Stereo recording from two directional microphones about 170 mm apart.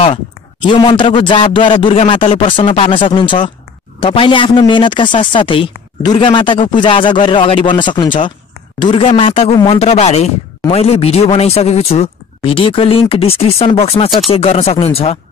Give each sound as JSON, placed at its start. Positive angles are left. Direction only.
{"t": 0.7, "sound": "speech", "side_deg": 25}